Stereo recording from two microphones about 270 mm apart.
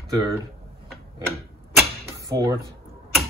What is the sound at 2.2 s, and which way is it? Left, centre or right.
Speech, centre.